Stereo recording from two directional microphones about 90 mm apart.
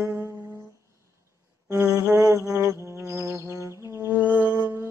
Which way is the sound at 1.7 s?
35° right (ahead or behind).